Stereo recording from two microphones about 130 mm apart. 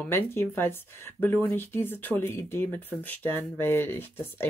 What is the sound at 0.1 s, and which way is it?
Speech, 20° left (ahead or behind).